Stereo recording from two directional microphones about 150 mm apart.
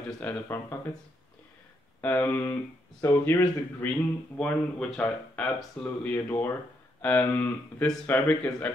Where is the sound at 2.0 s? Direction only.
15° left (ahead or behind).